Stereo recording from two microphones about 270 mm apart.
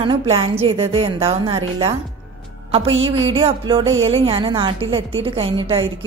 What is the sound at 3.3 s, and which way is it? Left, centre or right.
A woman's voice, centre.